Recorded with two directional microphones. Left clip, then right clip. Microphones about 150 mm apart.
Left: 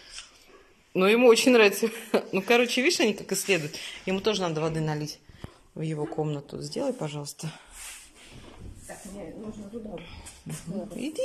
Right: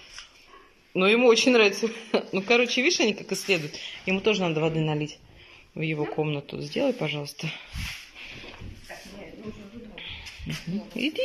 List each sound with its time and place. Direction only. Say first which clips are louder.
0.9 s speech: even; centre (ahead or behind); by 5.1 s 15° right (ahead or behind)
5.9 s speech: right 1 dB; centre (ahead or behind)
10.5 s a sound: right 6 dB; 30° left (ahead or behind)
11.0 s speech: right 5 dB; centre (ahead or behind)